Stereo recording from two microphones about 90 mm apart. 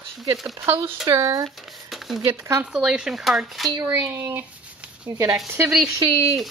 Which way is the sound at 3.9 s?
25° right (ahead or behind).